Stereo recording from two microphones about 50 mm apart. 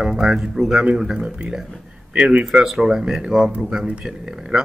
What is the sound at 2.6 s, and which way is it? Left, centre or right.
Speech, centre.